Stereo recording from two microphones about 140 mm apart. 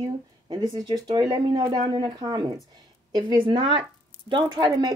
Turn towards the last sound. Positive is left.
turn(degrees=-35)  # may be behind; listen again after turning